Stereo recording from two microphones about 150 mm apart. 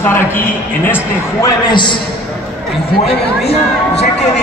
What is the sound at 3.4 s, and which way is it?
Speech, 45° left (ahead or behind).